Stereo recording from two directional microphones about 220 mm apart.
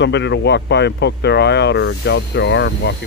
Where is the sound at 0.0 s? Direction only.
50° left (ahead or behind).